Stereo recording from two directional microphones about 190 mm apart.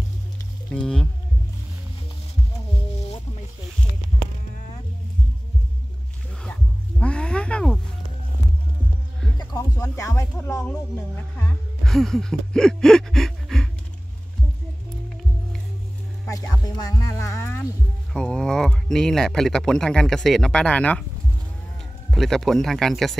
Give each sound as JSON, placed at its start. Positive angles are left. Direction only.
{"t": 0.7, "sound": "speech", "side_deg": 5}
{"t": 7.0, "sound": "a sound", "side_deg": 5}
{"t": 9.4, "sound": "music", "side_deg": 20}
{"t": 11.1, "sound": "speech", "side_deg": 5}
{"t": 16.3, "sound": "a sound", "side_deg": 20}
{"t": 18.1, "sound": "speech", "side_deg": 5}
{"t": 22.1, "sound": "speech", "side_deg": 0}